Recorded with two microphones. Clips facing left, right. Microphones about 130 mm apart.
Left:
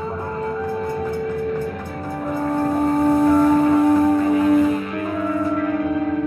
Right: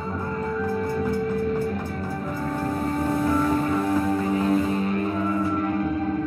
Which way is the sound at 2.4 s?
40° left (ahead or behind).